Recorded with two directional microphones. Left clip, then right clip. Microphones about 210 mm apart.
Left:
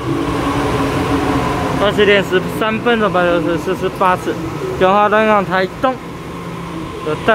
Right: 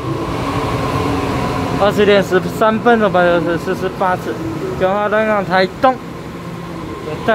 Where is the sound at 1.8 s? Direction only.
15° right (ahead or behind); by 5.5 s 5° left (ahead or behind).